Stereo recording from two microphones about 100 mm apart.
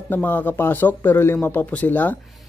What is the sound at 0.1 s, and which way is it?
Speech, 20° left (ahead or behind).